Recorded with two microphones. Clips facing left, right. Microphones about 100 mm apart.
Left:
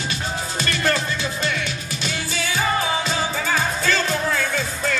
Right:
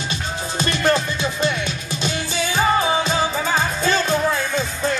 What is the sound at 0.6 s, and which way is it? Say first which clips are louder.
Music: right 4 dB; 20° right (ahead or behind).